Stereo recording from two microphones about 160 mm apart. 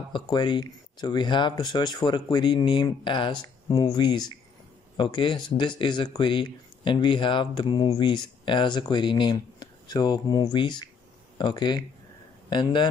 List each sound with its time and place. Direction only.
0.1 s a man's voice: 30° left (ahead or behind)